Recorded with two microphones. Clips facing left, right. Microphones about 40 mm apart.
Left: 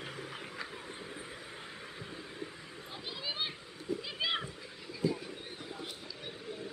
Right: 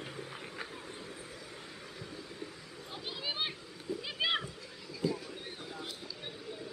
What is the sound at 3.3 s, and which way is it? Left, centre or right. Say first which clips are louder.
Children playing: right 1 dB; centre.